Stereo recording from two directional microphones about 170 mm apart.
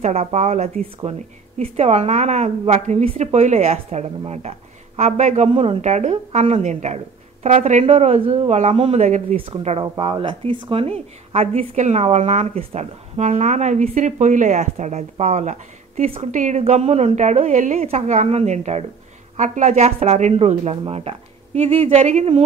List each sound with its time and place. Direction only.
0.0 s speech: 40° right (ahead or behind)